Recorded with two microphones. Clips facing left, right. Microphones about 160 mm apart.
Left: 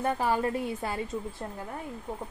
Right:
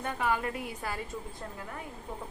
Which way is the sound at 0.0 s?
35° left (ahead or behind).